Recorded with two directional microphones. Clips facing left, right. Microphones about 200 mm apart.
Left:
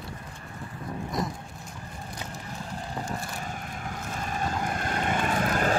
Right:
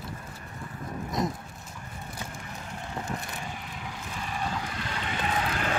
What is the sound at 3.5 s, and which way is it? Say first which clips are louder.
Vehicle: left 3 dB; 45° left (ahead or behind).